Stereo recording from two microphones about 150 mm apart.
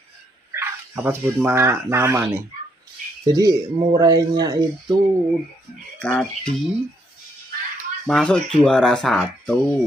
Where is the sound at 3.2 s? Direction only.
25° right (ahead or behind).